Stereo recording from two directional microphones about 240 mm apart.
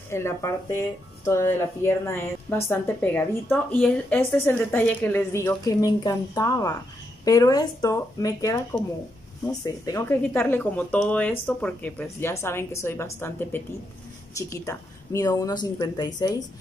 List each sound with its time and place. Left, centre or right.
0.1 s speech: centre